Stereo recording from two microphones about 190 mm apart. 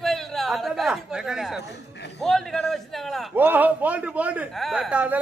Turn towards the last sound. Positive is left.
turn(degrees=-5)  # may be behind; listen again after turning